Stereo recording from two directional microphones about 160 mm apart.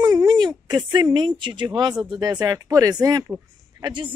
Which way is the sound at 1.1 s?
30° right (ahead or behind).